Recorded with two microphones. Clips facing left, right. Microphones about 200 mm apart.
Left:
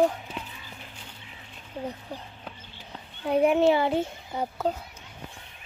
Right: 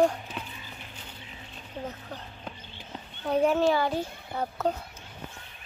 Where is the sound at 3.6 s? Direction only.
20° left (ahead or behind).